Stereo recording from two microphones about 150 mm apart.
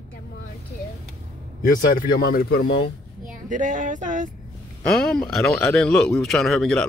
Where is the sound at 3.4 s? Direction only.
60° right (ahead or behind).